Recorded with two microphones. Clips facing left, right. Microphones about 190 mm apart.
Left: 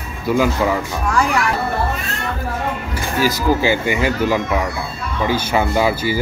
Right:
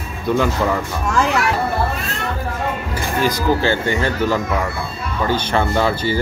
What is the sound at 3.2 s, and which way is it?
Speech, 10° left (ahead or behind).